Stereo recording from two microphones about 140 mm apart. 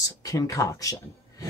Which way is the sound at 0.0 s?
25° left (ahead or behind).